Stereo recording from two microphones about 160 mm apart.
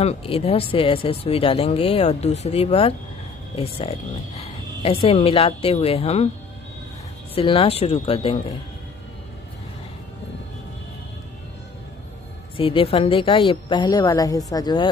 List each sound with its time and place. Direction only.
0.0 s speech: 40° left (ahead or behind)
7.3 s speech: 35° left (ahead or behind)
12.5 s speech: 35° left (ahead or behind)